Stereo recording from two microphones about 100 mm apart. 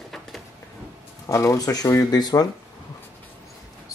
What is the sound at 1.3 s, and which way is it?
Speech, 35° left (ahead or behind).